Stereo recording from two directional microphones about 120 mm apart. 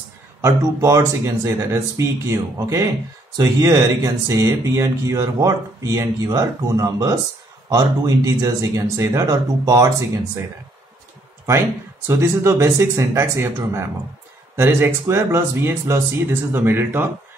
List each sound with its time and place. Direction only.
0.4 s speech: 25° right (ahead or behind)
12.1 s speech: 20° right (ahead or behind)